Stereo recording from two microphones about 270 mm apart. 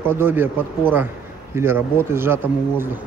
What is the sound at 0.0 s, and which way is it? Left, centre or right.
Speech, centre.